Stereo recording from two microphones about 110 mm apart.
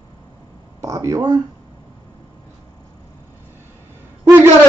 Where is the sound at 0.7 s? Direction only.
30° right (ahead or behind).